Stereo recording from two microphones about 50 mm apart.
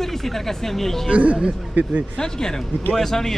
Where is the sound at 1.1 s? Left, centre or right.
Right.